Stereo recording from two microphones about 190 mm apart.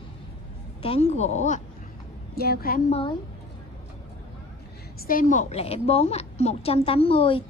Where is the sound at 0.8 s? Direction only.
35° left (ahead or behind).